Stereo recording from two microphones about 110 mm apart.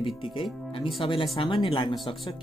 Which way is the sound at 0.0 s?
50° left (ahead or behind).